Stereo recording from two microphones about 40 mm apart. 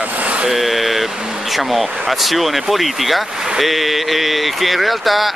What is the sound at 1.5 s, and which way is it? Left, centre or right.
Speech, centre.